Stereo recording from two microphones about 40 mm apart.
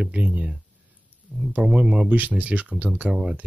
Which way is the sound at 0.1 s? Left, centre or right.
Right.